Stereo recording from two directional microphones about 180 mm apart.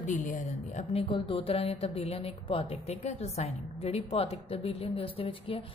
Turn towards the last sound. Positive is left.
turn(degrees=30)  # may be behind; listen again after turning